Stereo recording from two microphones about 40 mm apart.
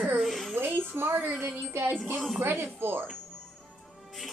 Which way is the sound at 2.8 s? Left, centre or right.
Right.